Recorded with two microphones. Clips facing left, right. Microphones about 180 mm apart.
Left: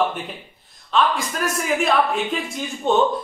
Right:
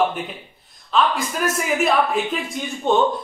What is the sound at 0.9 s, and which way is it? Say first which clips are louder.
Speech: even; centre (ahead or behind).